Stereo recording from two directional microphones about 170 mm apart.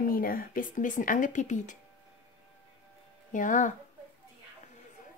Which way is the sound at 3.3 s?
50° left (ahead or behind).